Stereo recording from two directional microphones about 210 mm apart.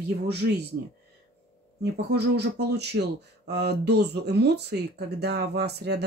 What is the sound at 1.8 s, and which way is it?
Speech, 50° right (ahead or behind).